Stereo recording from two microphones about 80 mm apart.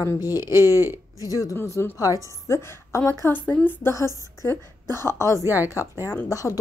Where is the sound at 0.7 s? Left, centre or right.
Right.